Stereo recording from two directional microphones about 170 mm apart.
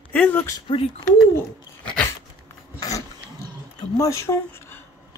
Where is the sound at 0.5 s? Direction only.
30° left (ahead or behind).